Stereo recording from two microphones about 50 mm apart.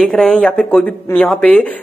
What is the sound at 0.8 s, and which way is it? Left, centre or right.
Speech, left.